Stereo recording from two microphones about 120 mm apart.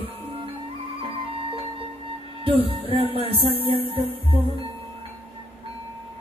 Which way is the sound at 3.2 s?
50° right (ahead or behind).